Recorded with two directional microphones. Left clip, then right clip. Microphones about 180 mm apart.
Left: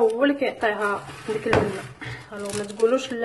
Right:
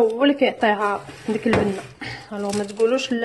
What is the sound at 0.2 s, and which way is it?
Speech, 30° right (ahead or behind).